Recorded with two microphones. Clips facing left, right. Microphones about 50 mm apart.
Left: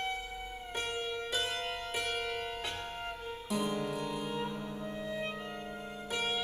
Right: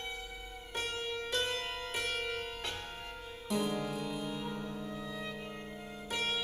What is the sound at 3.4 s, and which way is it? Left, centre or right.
Music, centre.